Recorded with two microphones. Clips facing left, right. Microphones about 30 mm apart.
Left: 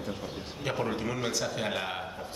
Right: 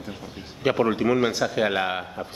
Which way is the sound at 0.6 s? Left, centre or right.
Right.